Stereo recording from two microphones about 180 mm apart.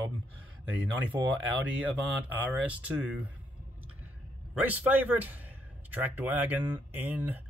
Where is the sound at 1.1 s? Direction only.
20° right (ahead or behind).